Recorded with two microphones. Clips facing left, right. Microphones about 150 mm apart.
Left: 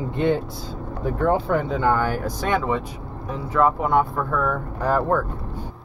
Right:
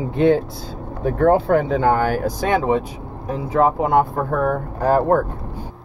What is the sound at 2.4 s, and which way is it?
Speech, 40° right (ahead or behind).